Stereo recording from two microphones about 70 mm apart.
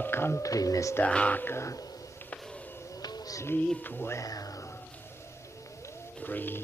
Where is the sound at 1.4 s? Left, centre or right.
Left.